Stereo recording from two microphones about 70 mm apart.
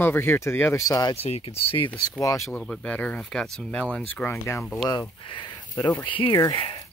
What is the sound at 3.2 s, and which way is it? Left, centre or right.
Speech, centre.